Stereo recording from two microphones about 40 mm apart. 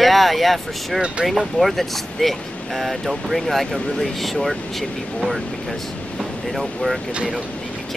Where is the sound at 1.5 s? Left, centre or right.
Centre.